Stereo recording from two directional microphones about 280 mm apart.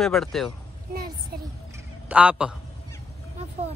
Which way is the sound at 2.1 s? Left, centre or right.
Centre.